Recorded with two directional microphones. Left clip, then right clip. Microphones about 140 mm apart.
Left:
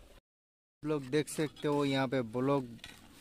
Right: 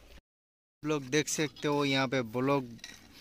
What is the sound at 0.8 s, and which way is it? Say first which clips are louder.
Speech: right 2 dB; centre (ahead or behind).